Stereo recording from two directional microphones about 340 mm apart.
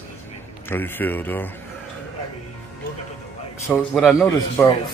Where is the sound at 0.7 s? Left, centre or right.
Centre.